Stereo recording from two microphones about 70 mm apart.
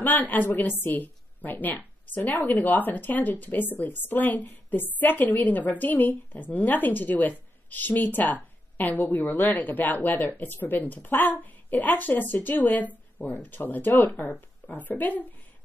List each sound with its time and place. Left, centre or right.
0.0 s a woman's voice: left